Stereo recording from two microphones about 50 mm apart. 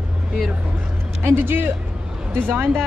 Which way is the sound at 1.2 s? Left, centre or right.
Right.